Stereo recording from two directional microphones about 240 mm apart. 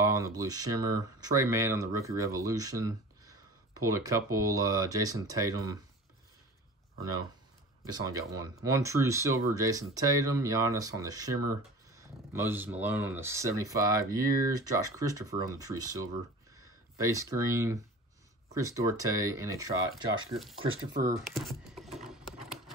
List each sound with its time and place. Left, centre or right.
0.0 s speech: centre
7.8 s speech: centre
20.6 s speech: right
21.2 s a sound: centre